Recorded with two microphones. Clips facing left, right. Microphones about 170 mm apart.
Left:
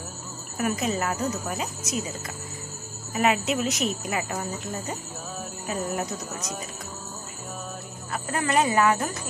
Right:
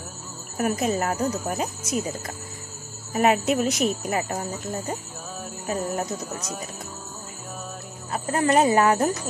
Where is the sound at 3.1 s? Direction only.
50° right (ahead or behind).